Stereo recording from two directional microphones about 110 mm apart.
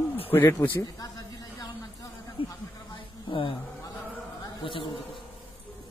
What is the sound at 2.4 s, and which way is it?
A man's voice, 55° left (ahead or behind).